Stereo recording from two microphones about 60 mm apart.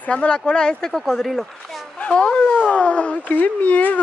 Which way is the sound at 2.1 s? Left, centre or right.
Centre.